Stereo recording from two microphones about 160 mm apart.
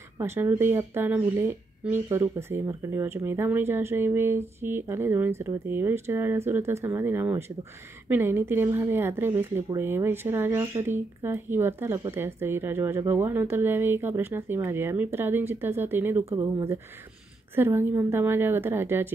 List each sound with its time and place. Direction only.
0.2 s speech: 15° right (ahead or behind)